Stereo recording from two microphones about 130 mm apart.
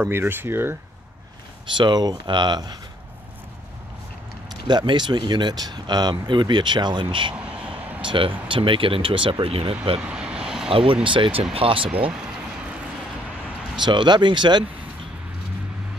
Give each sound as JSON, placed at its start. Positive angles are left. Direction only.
{"t": 0.0, "sound": "speech", "side_deg": -15}
{"t": 1.8, "sound": "speech", "side_deg": -35}
{"t": 4.6, "sound": "speech", "side_deg": -35}
{"t": 7.3, "sound": "a sound", "side_deg": -10}
{"t": 8.0, "sound": "speech", "side_deg": -40}
{"t": 9.9, "sound": "vehicle", "side_deg": -5}
{"t": 10.7, "sound": "speech", "side_deg": -45}
{"t": 13.7, "sound": "speech", "side_deg": -35}